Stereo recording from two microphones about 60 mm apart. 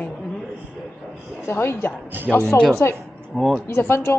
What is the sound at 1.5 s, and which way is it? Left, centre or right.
Speech, left.